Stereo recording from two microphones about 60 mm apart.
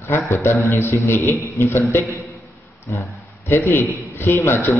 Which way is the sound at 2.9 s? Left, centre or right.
Left.